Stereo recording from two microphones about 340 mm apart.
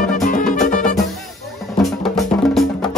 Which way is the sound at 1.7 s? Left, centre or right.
Centre.